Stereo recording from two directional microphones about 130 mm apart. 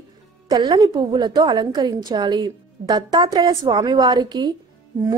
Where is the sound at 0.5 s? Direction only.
35° right (ahead or behind).